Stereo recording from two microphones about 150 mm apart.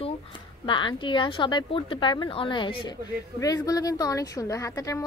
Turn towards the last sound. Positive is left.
turn(degrees=20)  # may be behind; listen again after turning